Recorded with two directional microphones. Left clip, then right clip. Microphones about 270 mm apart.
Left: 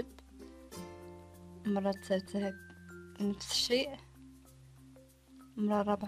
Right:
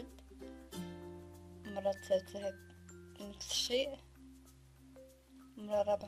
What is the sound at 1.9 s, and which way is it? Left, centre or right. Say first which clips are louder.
Speech: right 3 dB; left.